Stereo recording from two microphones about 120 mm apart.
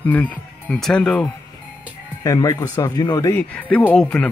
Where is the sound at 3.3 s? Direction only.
10° left (ahead or behind).